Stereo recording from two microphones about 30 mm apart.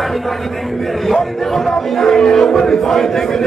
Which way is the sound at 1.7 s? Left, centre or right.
Centre.